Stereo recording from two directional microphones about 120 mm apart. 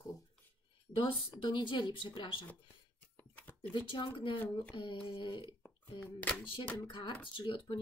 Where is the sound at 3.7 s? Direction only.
40° left (ahead or behind).